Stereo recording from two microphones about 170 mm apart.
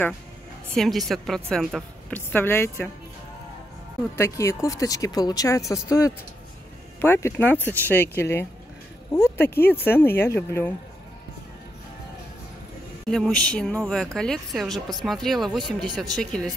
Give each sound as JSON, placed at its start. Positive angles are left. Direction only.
{"t": 0.7, "sound": "speech", "side_deg": 0}
{"t": 4.2, "sound": "speech", "side_deg": 15}
{"t": 13.1, "sound": "speech", "side_deg": 5}